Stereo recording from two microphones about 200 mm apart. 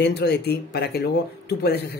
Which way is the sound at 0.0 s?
55° left (ahead or behind).